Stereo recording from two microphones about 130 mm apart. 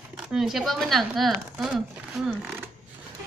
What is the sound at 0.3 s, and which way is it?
Speech, centre (ahead or behind).